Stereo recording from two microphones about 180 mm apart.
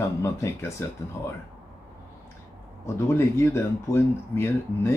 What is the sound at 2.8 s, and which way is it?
Speech, 15° left (ahead or behind).